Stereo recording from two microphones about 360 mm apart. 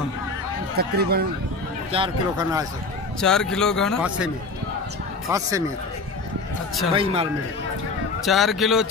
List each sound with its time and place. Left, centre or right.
0.7 s speech: right
1.9 s a man's voice: centre
3.2 s a man's voice: centre
5.3 s a man's voice: centre
6.9 s a man's voice: centre
8.3 s a man's voice: centre